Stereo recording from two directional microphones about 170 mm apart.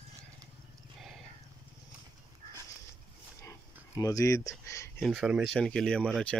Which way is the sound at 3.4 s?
20° left (ahead or behind).